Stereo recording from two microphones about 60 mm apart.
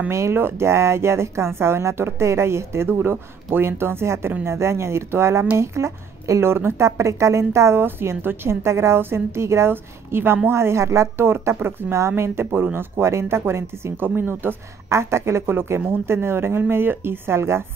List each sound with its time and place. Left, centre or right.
0.1 s a woman's voice: right
2.9 s a woman's voice: right
6.4 s a woman's voice: right
7.8 s a woman's voice: right
13.9 s a woman's voice: right
14.9 s a woman's voice: right